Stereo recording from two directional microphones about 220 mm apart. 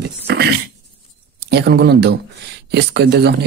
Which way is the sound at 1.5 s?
50° right (ahead or behind).